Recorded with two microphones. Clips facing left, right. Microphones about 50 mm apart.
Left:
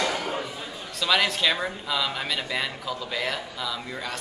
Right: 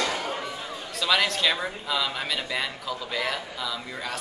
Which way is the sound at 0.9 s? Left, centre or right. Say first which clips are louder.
Left 1 dB; centre.